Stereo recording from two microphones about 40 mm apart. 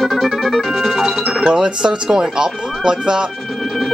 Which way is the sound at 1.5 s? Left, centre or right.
Right.